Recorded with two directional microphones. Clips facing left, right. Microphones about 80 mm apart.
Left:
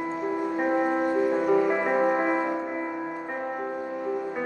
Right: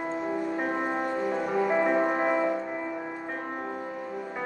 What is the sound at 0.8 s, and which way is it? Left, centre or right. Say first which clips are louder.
Music: left 5 dB; centre.